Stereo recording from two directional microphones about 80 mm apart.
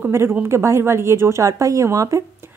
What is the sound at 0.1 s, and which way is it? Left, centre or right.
Speech, right.